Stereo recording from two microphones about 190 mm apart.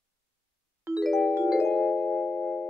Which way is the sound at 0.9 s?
Centre (ahead or behind).